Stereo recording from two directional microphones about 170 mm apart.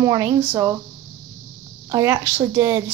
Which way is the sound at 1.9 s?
15° right (ahead or behind).